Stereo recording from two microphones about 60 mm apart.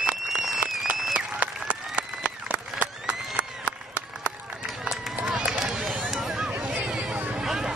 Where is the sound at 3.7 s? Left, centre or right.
Left.